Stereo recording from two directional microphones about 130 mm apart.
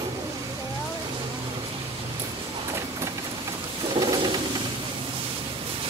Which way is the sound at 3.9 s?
35° right (ahead or behind).